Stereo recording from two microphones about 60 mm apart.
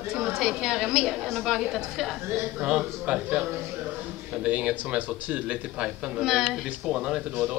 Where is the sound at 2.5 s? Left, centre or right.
Centre.